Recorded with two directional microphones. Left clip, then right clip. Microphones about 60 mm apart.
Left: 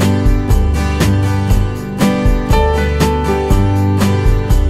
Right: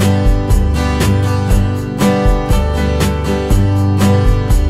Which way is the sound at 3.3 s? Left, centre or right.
Centre.